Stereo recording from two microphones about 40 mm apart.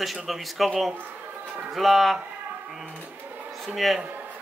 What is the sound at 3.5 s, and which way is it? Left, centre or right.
Speech, centre.